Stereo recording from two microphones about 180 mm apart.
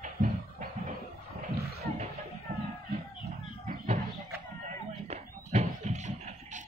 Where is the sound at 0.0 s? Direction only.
50° right (ahead or behind).